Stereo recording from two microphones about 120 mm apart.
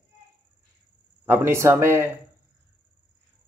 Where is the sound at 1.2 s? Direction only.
20° right (ahead or behind).